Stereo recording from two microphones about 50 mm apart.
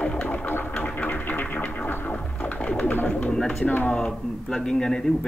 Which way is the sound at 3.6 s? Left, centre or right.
Left.